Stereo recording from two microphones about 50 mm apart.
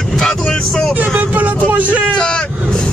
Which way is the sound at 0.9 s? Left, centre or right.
Right.